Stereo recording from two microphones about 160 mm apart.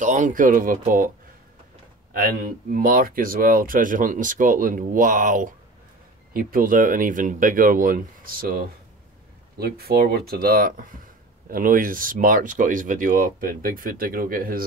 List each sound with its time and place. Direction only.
0.0 s speech: 50° right (ahead or behind)
2.1 s speech: 65° right (ahead or behind)